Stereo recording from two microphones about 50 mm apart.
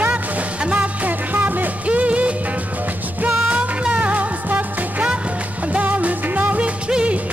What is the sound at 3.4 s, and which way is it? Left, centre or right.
Music, right.